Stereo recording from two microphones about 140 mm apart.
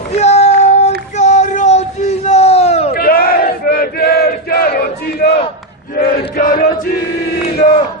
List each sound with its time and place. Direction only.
0.1 s a sound: 50° left (ahead or behind)
2.9 s battle cry: 90° left
5.9 s chant: 80° left